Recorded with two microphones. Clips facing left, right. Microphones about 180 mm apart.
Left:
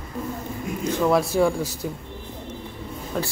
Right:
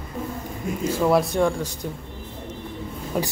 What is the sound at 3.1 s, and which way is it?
Speech, 10° right (ahead or behind).